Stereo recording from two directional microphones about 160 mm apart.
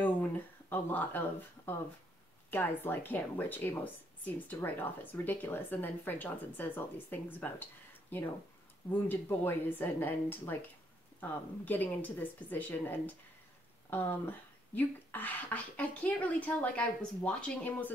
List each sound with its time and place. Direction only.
0.0 s speech: 10° left (ahead or behind)
8.9 s speech: 10° left (ahead or behind)